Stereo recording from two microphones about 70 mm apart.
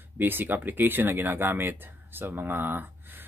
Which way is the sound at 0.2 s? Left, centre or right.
Right.